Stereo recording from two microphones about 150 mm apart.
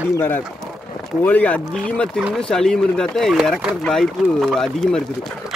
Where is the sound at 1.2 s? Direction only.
10° left (ahead or behind).